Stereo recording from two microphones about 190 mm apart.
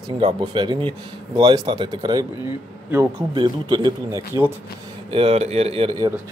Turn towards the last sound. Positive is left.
turn(degrees=-25)  # may be behind; listen again after turning